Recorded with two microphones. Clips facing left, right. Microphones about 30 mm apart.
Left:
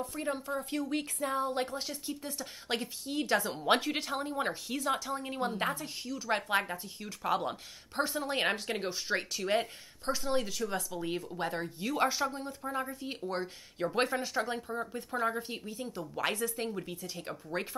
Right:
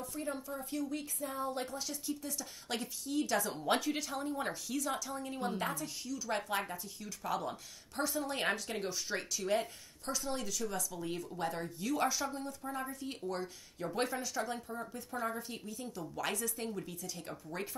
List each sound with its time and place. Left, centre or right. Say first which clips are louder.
0.0 s speech: left 5 dB; left
0.5 s speech: left 5 dB; left